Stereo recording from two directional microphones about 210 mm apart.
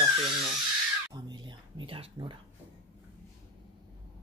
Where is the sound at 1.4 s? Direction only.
25° right (ahead or behind).